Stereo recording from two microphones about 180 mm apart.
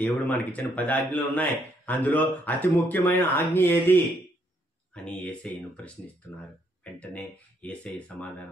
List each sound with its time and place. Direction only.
0.0 s speech: 10° left (ahead or behind)